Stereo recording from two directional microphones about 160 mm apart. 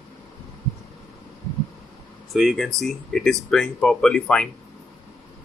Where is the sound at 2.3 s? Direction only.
Centre (ahead or behind).